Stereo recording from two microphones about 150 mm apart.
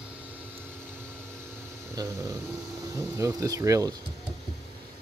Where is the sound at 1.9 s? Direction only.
20° right (ahead or behind).